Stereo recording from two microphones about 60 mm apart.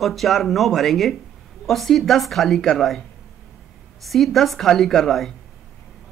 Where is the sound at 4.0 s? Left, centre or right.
Centre.